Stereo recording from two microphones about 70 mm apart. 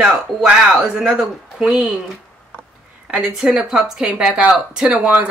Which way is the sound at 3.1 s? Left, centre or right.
Centre.